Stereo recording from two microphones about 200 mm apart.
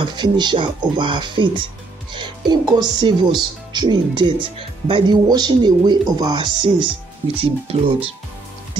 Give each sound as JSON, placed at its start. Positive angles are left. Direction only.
{"t": 0.0, "sound": "speech", "side_deg": -20}